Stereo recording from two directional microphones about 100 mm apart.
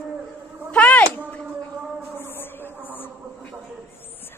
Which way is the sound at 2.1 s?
20° left (ahead or behind).